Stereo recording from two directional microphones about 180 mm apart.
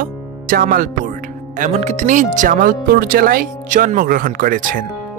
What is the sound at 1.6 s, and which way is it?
Speech, 40° right (ahead or behind).